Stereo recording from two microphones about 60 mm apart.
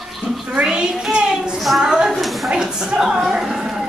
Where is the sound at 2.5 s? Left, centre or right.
Centre.